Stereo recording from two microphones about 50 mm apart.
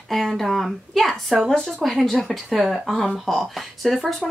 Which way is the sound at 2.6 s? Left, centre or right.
Centre.